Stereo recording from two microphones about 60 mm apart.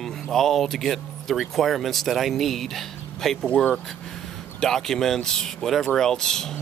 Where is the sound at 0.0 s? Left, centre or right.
Centre.